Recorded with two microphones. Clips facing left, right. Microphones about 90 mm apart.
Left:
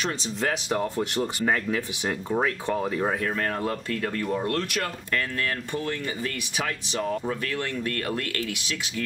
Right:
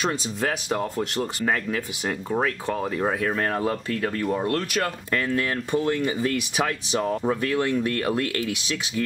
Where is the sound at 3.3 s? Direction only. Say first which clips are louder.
Right 3 dB; 15° right (ahead or behind).